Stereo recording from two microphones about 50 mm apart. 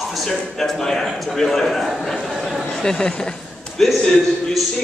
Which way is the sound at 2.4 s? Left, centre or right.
Centre.